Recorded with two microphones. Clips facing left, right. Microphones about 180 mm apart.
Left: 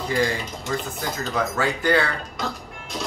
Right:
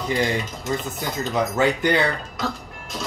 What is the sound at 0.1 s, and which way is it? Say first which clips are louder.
Speech: right 1 dB; 20° right (ahead or behind).